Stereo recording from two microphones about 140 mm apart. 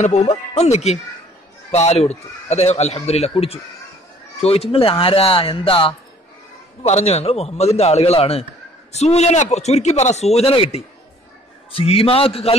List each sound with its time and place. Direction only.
0.0 s a man's voice: 55° left (ahead or behind)